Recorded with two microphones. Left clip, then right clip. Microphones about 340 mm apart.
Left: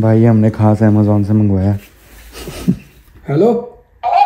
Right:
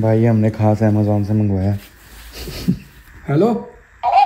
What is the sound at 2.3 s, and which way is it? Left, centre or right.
Wheeze, centre.